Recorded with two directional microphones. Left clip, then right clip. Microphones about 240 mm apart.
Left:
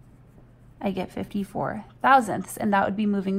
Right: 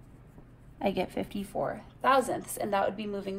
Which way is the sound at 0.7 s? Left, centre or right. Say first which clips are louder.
Even; centre.